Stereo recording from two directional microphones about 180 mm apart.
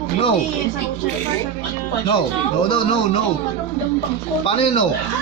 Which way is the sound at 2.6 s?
30° left (ahead or behind).